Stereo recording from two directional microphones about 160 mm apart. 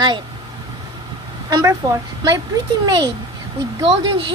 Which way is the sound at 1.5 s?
20° right (ahead or behind).